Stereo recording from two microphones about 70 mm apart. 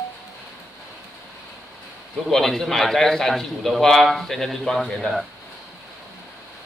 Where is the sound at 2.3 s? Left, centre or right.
Centre.